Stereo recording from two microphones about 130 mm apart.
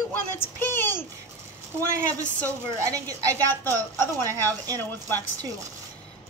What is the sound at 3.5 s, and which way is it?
A woman's voice, 15° left (ahead or behind).